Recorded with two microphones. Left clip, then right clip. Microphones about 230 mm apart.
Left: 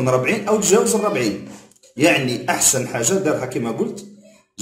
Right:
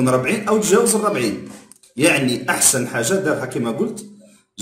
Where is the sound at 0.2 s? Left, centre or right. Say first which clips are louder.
Even; centre.